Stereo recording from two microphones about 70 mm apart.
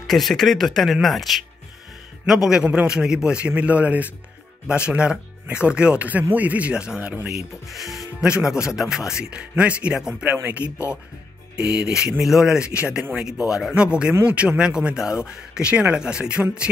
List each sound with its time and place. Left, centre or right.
0.0 s speech: centre
2.6 s a man's voice: centre
8.2 s a man's voice: centre